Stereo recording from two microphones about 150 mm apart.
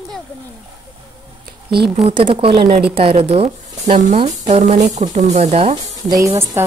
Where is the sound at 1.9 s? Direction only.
40° right (ahead or behind).